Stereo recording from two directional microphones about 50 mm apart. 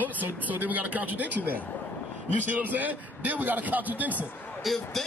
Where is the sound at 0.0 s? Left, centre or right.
Right.